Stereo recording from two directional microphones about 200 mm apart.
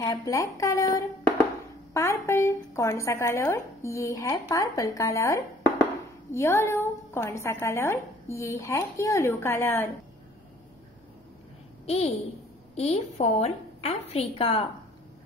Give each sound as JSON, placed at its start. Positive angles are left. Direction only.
{"t": 0.0, "sound": "a woman's voice", "side_deg": 20}
{"t": 11.8, "sound": "a woman's voice", "side_deg": 30}